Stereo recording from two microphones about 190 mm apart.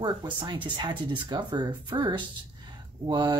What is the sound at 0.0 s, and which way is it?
Speech, 25° right (ahead or behind).